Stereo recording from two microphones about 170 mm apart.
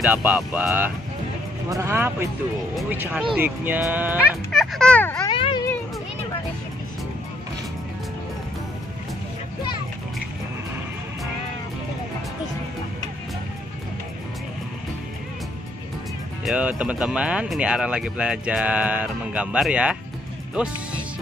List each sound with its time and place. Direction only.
0.0 s speech: 10° right (ahead or behind)
4.5 s speech: 5° left (ahead or behind)
5.2 s a sound: 30° left (ahead or behind)
16.4 s speech: 5° right (ahead or behind)